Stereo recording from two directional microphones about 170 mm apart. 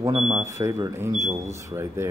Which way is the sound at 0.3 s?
15° right (ahead or behind).